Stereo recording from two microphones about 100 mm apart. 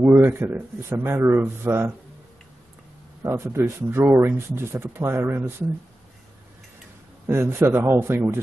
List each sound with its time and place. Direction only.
0.0 s speech: 25° right (ahead or behind)
3.2 s speech: 25° right (ahead or behind)
7.2 s speech: 25° right (ahead or behind)